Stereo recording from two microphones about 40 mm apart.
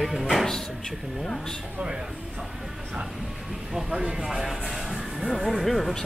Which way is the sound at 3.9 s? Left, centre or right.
Centre.